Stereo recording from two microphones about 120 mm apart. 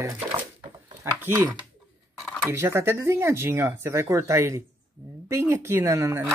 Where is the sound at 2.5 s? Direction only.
20° right (ahead or behind).